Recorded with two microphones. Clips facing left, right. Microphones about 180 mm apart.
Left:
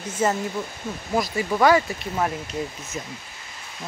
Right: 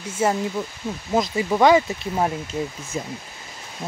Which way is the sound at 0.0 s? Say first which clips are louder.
Right 1 dB; 10° right (ahead or behind).